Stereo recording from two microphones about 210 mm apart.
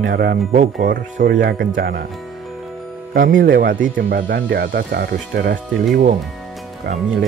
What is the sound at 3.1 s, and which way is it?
Speech, 40° right (ahead or behind).